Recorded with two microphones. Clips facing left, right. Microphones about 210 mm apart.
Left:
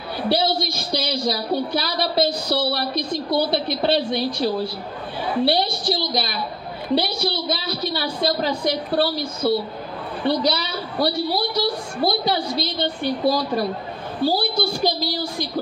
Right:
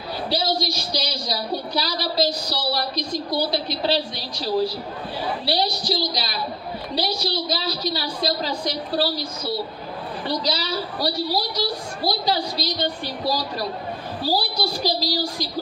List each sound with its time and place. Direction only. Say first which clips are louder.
0.3 s a woman's voice: left 3 dB; 55° left (ahead or behind)